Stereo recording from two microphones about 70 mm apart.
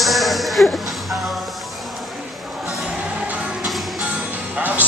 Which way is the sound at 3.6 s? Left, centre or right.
Centre.